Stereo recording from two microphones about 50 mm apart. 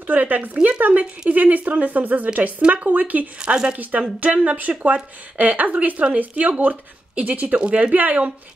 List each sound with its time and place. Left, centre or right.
0.0 s speech: right
3.3 s speech: centre
3.7 s speech: right